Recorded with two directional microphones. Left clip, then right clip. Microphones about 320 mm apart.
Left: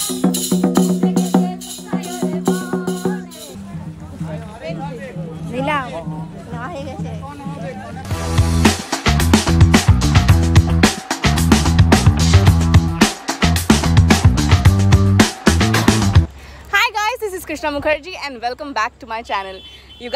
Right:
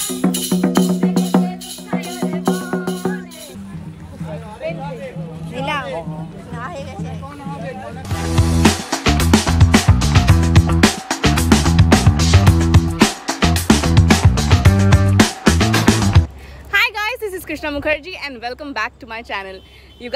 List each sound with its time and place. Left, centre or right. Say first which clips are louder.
0.0 s music: left 1 dB; centre
5.5 s a sound: left 3 dB; left
8.4 s music: right 1 dB; centre
16.7 s speech: left 1 dB; centre